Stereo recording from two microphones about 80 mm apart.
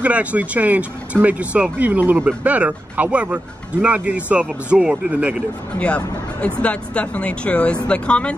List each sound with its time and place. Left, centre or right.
0.0 s speech: centre
5.8 s speech: centre